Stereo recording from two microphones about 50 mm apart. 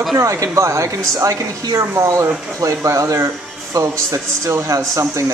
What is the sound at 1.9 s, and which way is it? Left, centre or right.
Speech, right.